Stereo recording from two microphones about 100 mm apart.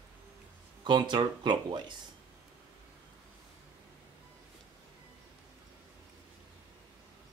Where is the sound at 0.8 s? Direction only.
50° right (ahead or behind).